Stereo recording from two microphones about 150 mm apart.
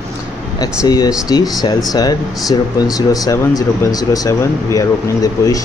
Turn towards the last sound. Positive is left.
turn(degrees=25)  # may be behind; listen again after turning